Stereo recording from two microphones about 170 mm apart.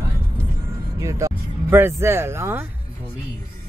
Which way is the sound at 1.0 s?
15° right (ahead or behind).